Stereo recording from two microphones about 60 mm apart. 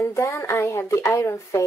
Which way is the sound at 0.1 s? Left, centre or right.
Left.